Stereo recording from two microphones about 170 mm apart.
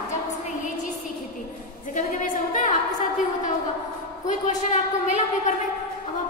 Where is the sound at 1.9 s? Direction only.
50° left (ahead or behind).